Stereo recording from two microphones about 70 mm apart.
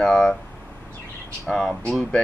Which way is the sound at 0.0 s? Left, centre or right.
Centre.